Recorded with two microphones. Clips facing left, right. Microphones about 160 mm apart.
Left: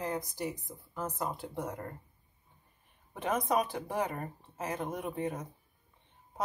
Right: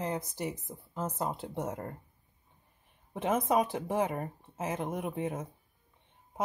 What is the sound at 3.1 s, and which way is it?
Speech, 25° right (ahead or behind).